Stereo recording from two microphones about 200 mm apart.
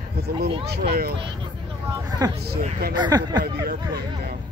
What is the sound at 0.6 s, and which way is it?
Speech, 50° right (ahead or behind).